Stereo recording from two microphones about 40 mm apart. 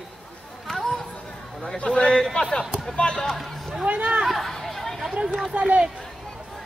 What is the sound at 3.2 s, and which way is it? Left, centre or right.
Chatter, centre.